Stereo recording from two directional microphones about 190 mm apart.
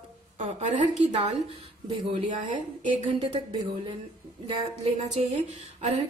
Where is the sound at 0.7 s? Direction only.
35° right (ahead or behind).